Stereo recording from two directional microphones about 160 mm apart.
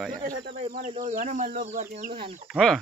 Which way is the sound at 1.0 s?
55° right (ahead or behind).